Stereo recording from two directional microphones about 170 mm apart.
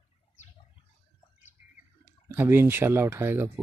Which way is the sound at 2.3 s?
15° right (ahead or behind).